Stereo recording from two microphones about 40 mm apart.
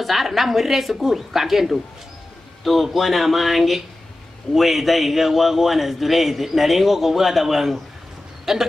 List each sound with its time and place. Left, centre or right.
0.0 s a man's voice: centre